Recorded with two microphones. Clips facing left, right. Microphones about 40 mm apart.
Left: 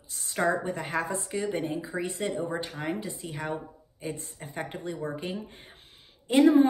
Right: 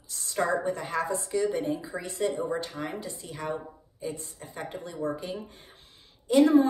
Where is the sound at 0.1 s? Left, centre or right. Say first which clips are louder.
Even; centre.